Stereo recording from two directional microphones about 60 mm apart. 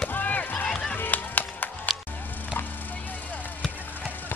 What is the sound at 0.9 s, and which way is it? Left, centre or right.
Music, left.